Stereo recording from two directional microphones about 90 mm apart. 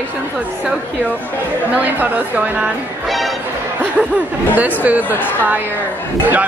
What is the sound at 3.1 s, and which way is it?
Music, centre (ahead or behind).